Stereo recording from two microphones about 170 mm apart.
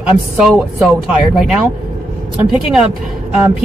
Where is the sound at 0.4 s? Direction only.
5° right (ahead or behind).